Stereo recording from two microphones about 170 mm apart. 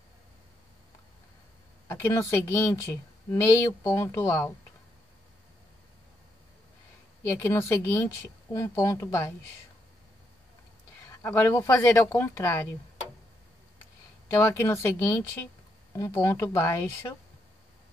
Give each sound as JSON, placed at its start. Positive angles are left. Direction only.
{"t": 1.9, "sound": "speech", "side_deg": 15}
{"t": 7.2, "sound": "speech", "side_deg": 15}
{"t": 11.1, "sound": "speech", "side_deg": 15}
{"t": 14.4, "sound": "speech", "side_deg": 15}